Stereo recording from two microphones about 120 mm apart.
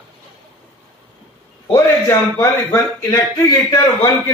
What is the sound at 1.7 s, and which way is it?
A man's voice, 25° left (ahead or behind).